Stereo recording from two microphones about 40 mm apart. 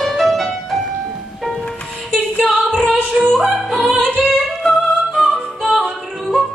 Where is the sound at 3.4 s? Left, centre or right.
Right.